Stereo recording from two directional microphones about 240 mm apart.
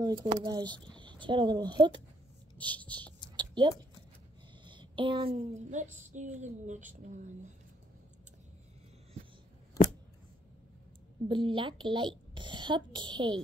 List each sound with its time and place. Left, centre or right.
0.0 s a woman's voice: centre
3.3 s a sound: centre
4.6 s a woman's voice: centre
11.2 s a woman's voice: right